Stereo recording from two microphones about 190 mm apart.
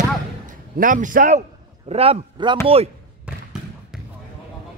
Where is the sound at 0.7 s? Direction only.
45° right (ahead or behind).